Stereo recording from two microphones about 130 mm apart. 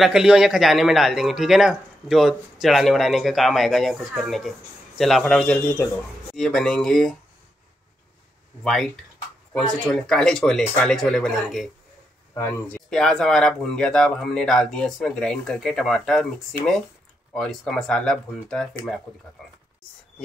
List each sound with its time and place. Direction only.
0.0 s a man's voice: 5° right (ahead or behind)
8.6 s a man's voice: centre (ahead or behind)
12.4 s speech: 15° left (ahead or behind)
12.9 s a man's voice: 5° left (ahead or behind)
17.3 s a man's voice: 5° left (ahead or behind)